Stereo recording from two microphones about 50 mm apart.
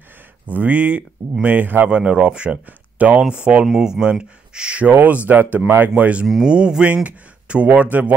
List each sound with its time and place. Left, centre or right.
0.5 s speech: right
1.9 s speech: right
4.8 s speech: right
6.4 s speech: centre; by 8.1 s right